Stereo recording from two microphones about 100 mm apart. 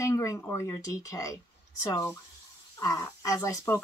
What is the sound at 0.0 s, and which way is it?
Speech, 35° left (ahead or behind).